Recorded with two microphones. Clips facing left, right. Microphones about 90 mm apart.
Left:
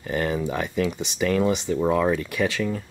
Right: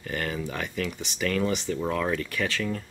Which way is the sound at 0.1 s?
20° left (ahead or behind).